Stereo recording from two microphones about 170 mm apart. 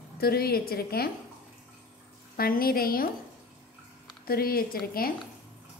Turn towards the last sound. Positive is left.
turn(degrees=60)  # may be behind; listen again after turning